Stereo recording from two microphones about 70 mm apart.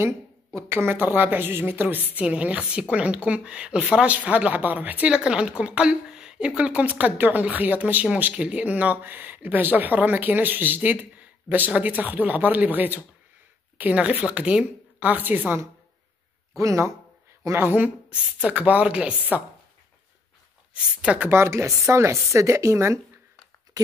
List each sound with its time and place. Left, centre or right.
0.7 s speech: right
2.1 s a woman's voice: centre
5.1 s a woman's voice: centre; by 15.6 s right
16.5 s speech: right
17.6 s speech: right
20.7 s a woman's voice: centre
21.3 s speech: right